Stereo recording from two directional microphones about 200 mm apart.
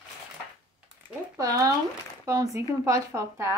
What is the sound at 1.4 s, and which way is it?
Speech, 15° right (ahead or behind).